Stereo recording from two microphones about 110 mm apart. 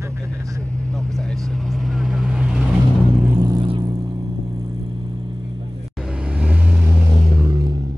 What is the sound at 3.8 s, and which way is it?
Vehicle, 40° right (ahead or behind).